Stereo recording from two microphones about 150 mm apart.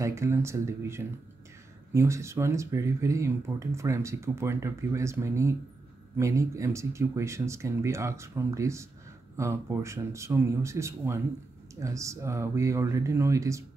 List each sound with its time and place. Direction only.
0.0 s speech: 20° right (ahead or behind)